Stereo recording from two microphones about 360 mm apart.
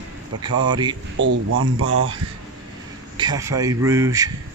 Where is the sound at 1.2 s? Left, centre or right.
Right.